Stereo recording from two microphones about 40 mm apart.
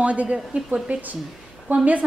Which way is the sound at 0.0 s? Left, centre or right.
Right.